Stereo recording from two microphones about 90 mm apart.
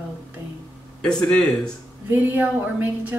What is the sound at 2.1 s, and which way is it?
Speech, 20° right (ahead or behind).